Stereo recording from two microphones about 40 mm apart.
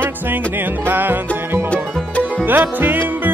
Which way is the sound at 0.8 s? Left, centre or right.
Right.